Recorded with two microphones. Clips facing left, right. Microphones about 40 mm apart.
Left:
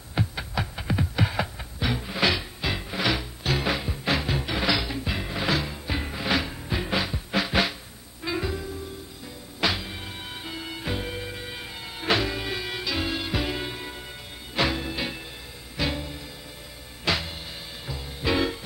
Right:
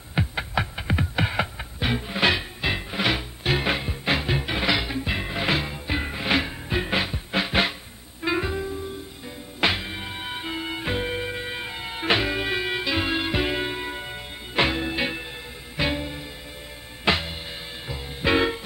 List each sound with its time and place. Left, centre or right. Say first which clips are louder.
0.1 s music: right 3 dB; right
6.2 s music: right 2 dB; right
7.3 s drum: right 1 dB; right
8.2 s music: right 4 dB; right